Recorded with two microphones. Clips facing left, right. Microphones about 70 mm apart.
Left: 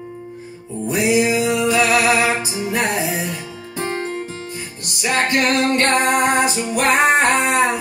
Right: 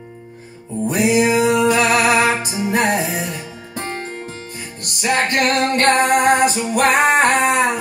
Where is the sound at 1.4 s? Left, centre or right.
Right.